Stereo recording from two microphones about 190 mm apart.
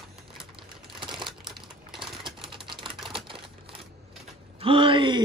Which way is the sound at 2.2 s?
25° right (ahead or behind).